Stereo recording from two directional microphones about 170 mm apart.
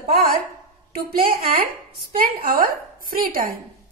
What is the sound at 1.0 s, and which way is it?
A woman's voice, 60° right (ahead or behind).